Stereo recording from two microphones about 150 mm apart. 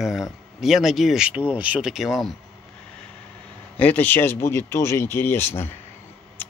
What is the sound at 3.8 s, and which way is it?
Speech, 10° left (ahead or behind).